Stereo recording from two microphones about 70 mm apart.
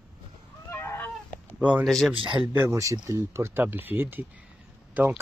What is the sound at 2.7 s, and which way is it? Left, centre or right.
Speech, right.